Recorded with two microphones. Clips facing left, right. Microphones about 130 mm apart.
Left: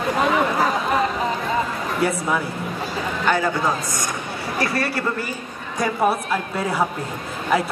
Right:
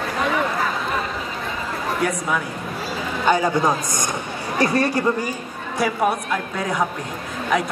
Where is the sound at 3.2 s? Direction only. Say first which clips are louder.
Right 3 dB; 15° right (ahead or behind).